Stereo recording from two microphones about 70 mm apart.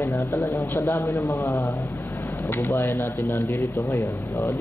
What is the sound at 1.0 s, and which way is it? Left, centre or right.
Speech, left.